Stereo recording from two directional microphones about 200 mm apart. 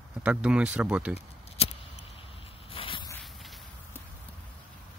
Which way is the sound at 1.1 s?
30° left (ahead or behind).